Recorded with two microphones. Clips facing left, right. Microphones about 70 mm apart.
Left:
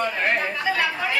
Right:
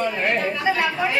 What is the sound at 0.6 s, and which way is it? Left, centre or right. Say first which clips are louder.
Speech: right 2 dB; centre.